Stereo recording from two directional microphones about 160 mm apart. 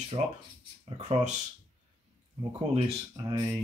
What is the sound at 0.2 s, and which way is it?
Speech, 40° right (ahead or behind).